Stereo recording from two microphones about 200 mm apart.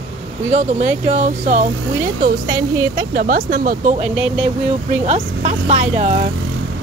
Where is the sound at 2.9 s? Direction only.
45° right (ahead or behind).